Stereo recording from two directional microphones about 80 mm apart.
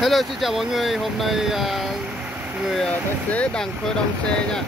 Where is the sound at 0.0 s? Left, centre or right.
Centre.